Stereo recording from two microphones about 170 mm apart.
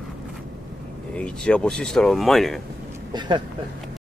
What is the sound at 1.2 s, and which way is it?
Speech, 5° left (ahead or behind).